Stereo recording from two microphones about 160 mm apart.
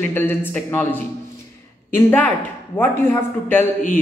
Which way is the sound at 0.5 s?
10° left (ahead or behind).